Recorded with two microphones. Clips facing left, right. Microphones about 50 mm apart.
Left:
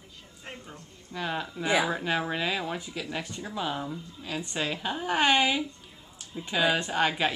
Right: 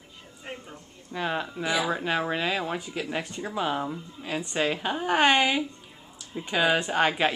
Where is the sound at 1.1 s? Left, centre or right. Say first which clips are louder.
Right 3 dB; centre.